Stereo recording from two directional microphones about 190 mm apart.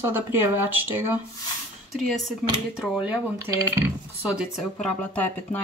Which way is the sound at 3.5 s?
20° right (ahead or behind).